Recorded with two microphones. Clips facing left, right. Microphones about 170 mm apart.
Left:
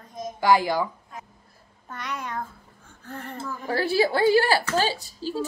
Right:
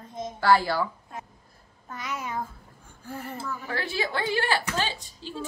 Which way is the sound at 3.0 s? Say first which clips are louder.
Even; 10° right (ahead or behind).